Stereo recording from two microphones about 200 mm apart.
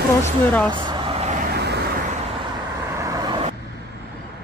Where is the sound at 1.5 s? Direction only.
55° right (ahead or behind).